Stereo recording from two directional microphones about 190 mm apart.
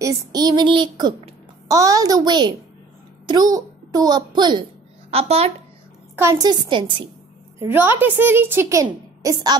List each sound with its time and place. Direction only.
0.0 s a child's voice: 20° right (ahead or behind)
6.1 s a child's voice: 15° right (ahead or behind)
7.5 s a child's voice: 10° right (ahead or behind)